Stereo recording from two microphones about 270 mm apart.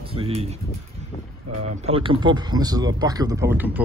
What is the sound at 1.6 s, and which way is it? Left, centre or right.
Speech, right.